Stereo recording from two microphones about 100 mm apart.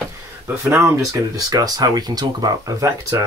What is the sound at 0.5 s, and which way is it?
Speech, 25° right (ahead or behind).